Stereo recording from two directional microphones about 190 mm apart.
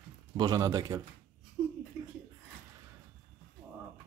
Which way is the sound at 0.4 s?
20° right (ahead or behind).